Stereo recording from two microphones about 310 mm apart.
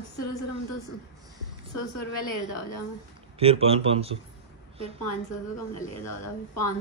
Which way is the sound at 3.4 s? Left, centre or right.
Centre.